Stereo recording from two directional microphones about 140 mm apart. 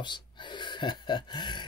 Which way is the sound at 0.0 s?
35° left (ahead or behind).